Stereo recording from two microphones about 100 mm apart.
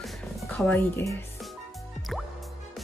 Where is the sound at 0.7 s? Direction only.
20° left (ahead or behind).